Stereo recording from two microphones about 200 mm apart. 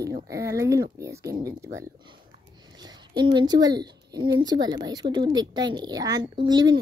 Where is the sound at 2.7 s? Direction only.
20° right (ahead or behind).